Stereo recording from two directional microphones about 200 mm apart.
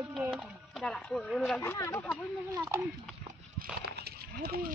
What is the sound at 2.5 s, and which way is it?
Speech, 15° right (ahead or behind).